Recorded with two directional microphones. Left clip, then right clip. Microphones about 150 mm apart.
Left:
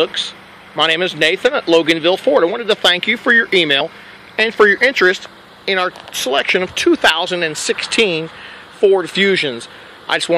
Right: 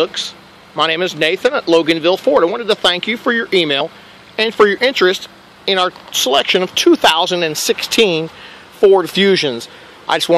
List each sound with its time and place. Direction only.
0.0 s speech: centre (ahead or behind); by 10.3 s 35° right (ahead or behind)